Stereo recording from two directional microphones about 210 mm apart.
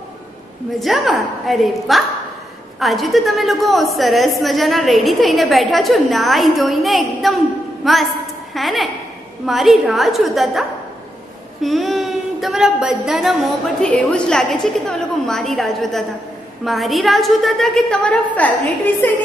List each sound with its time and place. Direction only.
0.7 s a woman's voice: centre (ahead or behind)